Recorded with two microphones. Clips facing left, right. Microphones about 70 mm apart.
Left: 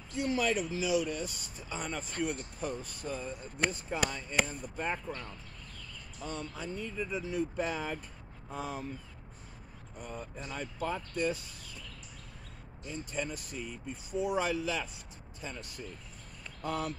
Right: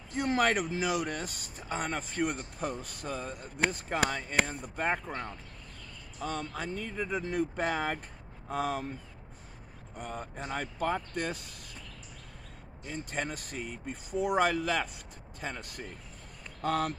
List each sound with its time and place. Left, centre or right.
0.1 s speech: right
9.9 s speech: right
12.8 s speech: right